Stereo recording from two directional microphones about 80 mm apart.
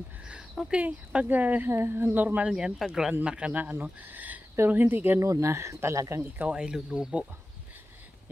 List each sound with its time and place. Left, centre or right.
0.7 s speech: centre
2.5 s speech: centre; by 5.2 s right
5.2 s speech: right
6.3 s speech: centre